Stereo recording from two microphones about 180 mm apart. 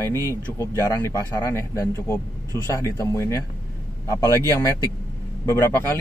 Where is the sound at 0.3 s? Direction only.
15° left (ahead or behind).